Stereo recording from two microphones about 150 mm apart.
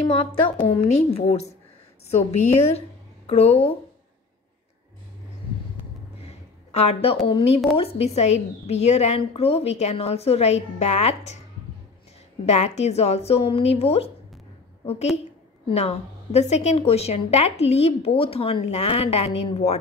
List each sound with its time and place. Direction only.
0.1 s a woman's voice: 40° left (ahead or behind)
6.2 s a sound: 45° left (ahead or behind)
7.7 s a woman's voice: 40° left (ahead or behind)
12.4 s a woman's voice: 50° left (ahead or behind)
15.7 s a woman's voice: 45° left (ahead or behind)